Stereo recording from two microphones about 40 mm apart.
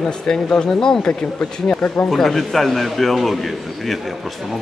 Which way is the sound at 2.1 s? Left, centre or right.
Centre.